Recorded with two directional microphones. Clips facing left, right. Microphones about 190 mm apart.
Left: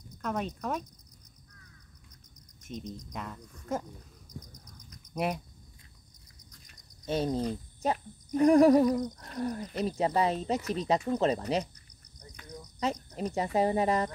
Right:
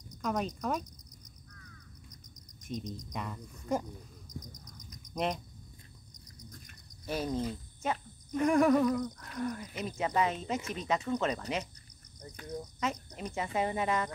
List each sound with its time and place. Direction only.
0.2 s speech: centre (ahead or behind)
2.6 s speech: 5° left (ahead or behind)
5.1 s speech: 5° left (ahead or behind)
7.1 s speech: 25° left (ahead or behind)
7.8 s speech: 35° left (ahead or behind)
12.8 s speech: 35° left (ahead or behind)